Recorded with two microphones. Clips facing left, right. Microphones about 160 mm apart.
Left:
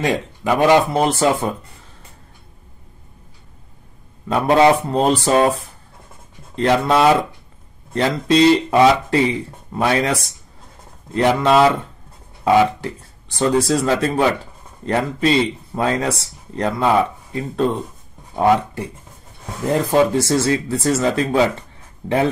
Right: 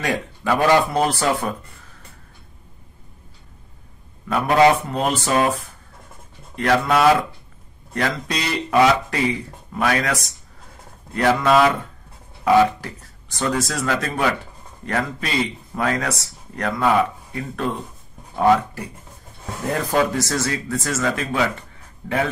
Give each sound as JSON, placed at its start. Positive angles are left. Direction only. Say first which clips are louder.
{"t": 0.0, "sound": "speech", "louder": "left 4 dB", "side_deg": 20}
{"t": 4.3, "sound": "speech", "louder": "left 2 dB", "side_deg": 30}
{"t": 19.7, "sound": "speech", "louder": "left 5 dB", "side_deg": 25}